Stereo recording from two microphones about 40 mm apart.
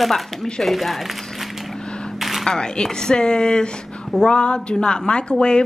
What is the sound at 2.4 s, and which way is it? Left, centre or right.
Speech, centre.